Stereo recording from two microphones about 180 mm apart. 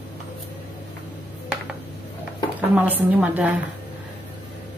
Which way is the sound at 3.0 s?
10° right (ahead or behind).